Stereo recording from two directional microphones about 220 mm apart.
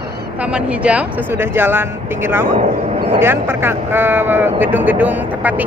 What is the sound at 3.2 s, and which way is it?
Speech, 10° right (ahead or behind).